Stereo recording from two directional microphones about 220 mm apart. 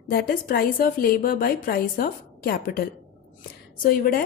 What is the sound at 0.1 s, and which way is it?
Speech, 45° left (ahead or behind).